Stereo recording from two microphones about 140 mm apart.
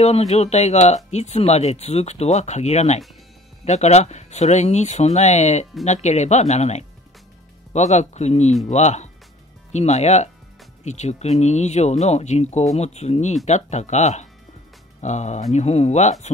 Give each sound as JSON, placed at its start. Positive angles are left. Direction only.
{"t": 0.0, "sound": "speech", "side_deg": 50}